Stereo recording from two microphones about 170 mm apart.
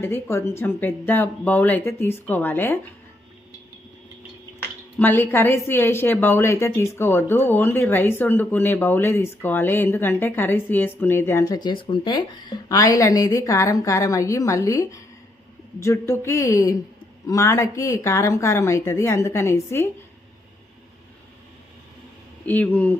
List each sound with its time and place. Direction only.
0.0 s a woman's voice: 15° left (ahead or behind)
4.9 s a woman's voice: 10° left (ahead or behind)
22.5 s a woman's voice: 10° left (ahead or behind)